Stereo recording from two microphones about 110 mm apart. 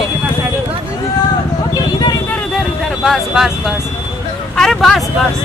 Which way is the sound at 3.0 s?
Centre (ahead or behind).